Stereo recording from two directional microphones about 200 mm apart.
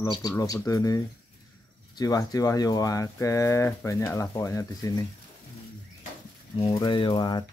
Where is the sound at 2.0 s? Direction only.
20° left (ahead or behind).